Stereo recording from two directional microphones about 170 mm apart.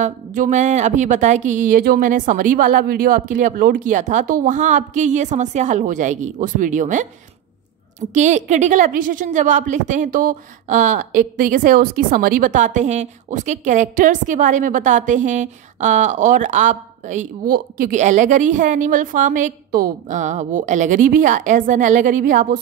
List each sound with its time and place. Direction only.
0.0 s a woman's voice: 50° right (ahead or behind)
8.1 s a woman's voice: 45° right (ahead or behind)